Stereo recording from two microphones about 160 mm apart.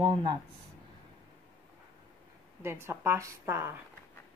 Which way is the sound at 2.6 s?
15° right (ahead or behind).